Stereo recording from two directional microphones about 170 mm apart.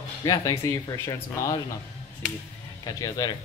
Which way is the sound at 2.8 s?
25° left (ahead or behind).